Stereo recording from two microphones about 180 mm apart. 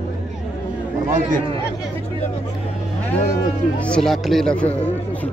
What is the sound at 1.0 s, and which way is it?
Speech, 45° right (ahead or behind).